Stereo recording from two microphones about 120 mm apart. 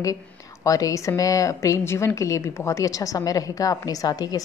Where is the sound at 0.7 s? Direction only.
30° left (ahead or behind).